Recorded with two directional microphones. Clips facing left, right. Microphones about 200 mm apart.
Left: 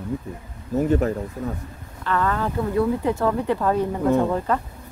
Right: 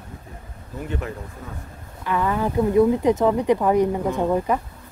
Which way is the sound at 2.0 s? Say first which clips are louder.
Right 1 dB; 15° right (ahead or behind).